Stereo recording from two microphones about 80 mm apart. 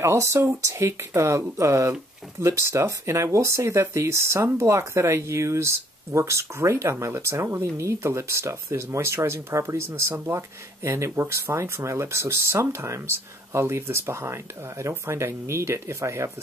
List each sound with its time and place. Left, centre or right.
0.0 s speech: right